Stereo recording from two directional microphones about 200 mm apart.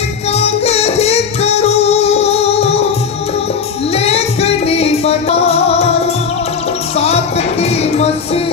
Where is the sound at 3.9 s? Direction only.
30° left (ahead or behind).